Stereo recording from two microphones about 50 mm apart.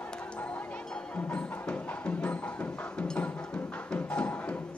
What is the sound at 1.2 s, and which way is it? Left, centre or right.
Music, left.